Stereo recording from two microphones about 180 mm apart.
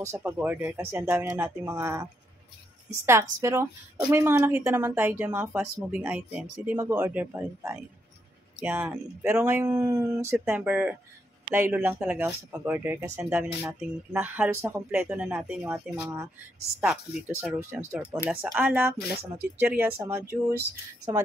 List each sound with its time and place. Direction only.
0.0 s speech: 15° right (ahead or behind)
3.1 s speech: 15° right (ahead or behind)
10.3 s speech: 5° right (ahead or behind)
17.4 s speech: 10° right (ahead or behind)